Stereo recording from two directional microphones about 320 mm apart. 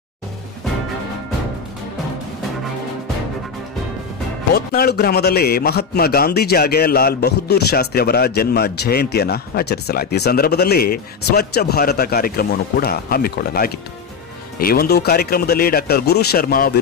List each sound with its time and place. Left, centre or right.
4.6 s a man's voice: left